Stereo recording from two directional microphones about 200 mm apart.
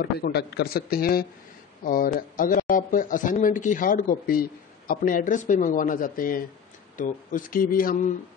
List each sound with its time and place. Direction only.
0.0 s a man's voice: 50° left (ahead or behind)